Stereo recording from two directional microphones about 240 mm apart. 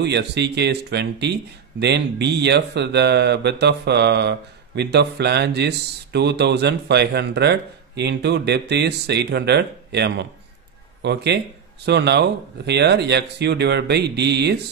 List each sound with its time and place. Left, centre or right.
0.0 s speech: right